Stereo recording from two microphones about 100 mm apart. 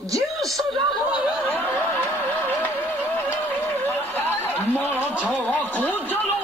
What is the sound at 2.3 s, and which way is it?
Music, 20° left (ahead or behind).